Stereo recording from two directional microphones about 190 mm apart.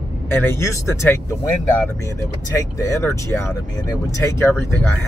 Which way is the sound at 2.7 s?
15° left (ahead or behind).